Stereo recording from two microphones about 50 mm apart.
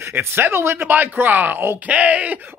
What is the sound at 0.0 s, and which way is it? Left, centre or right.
Speech, right.